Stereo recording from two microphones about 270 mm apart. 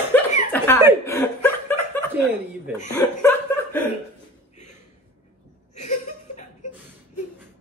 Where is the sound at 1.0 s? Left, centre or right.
Centre.